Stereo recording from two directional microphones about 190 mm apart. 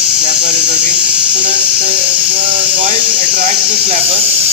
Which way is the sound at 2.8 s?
25° right (ahead or behind).